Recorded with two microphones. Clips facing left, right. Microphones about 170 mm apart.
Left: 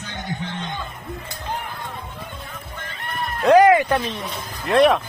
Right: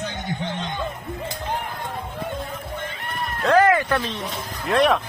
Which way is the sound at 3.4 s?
15° left (ahead or behind).